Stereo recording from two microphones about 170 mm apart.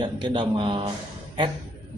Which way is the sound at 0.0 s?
30° right (ahead or behind).